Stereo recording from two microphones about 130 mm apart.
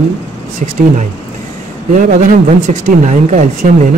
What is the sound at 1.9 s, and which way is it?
Speech, 85° right.